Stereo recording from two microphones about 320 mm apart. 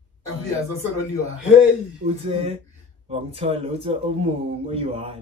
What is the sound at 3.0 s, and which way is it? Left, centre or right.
A man's voice, centre.